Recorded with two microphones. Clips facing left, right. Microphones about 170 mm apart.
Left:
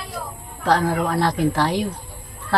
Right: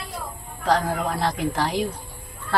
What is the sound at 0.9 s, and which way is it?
Speech, 60° left (ahead or behind).